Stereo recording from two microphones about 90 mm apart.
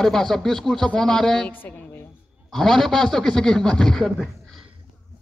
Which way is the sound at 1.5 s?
20° left (ahead or behind).